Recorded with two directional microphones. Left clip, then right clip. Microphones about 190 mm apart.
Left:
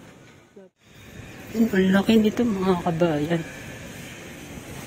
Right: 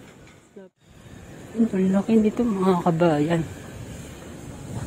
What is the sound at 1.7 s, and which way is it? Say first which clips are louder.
Speech: left 4 dB; 15° left (ahead or behind).